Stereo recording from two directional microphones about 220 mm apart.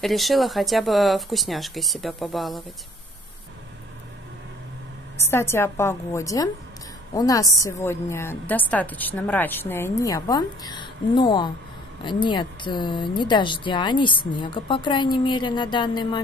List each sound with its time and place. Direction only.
0.0 s speech: centre (ahead or behind)
5.1 s a woman's voice: 10° left (ahead or behind)